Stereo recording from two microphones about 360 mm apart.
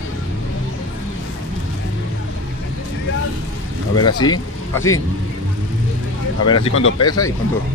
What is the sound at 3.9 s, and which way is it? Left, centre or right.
Speech, left.